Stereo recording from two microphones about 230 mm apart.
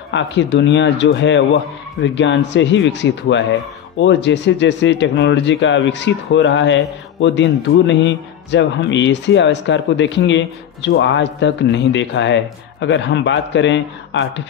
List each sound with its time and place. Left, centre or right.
0.1 s speech: left